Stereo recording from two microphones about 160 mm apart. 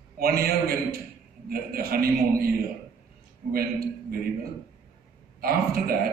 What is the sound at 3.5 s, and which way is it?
Speech, 70° right (ahead or behind).